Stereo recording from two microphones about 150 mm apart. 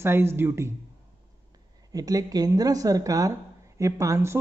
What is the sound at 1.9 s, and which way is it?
A woman's voice, 25° right (ahead or behind).